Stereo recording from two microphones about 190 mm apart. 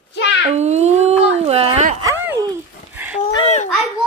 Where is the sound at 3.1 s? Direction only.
35° left (ahead or behind).